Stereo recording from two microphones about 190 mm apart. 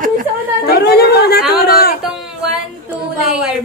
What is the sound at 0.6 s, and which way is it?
Chatter, 55° left (ahead or behind).